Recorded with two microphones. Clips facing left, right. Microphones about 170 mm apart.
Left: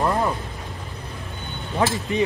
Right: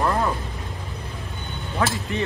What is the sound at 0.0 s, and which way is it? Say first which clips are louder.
Vehicle: left 1 dB; 20° left (ahead or behind).